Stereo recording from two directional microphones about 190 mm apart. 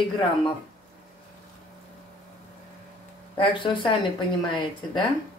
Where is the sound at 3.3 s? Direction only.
25° left (ahead or behind).